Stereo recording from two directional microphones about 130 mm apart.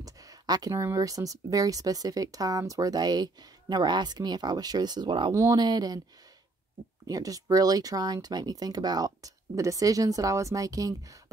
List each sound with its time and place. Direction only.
0.0 s speech: 30° right (ahead or behind)
5.3 s speech: 25° right (ahead or behind)
7.1 s speech: 25° right (ahead or behind)